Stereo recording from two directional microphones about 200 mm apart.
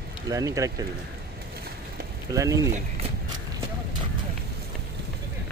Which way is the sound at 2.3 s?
15° right (ahead or behind).